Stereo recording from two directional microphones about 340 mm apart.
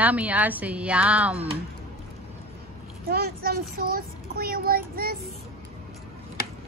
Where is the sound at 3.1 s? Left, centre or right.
Right.